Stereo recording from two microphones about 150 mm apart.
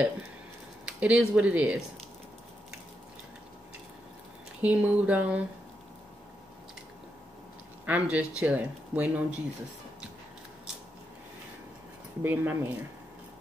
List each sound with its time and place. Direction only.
0.8 s speech: 5° right (ahead or behind)
4.6 s speech: 10° right (ahead or behind)
7.8 s speech: 10° right (ahead or behind)
12.2 s speech: 15° right (ahead or behind)